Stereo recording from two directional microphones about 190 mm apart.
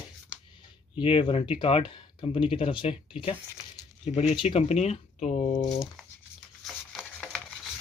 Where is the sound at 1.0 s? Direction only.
25° left (ahead or behind).